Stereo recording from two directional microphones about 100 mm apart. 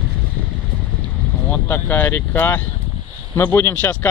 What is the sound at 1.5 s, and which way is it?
Speech, 20° left (ahead or behind).